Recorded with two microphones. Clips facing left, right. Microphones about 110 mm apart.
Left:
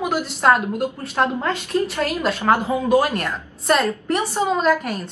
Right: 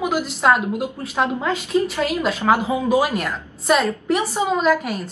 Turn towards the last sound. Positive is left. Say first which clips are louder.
# even
turn(degrees=-5)  # may be behind; listen again after turning